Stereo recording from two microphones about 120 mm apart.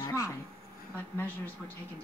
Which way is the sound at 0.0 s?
30° left (ahead or behind).